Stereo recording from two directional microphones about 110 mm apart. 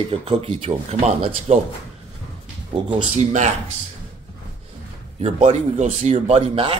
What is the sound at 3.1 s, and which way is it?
Speech, 90° right.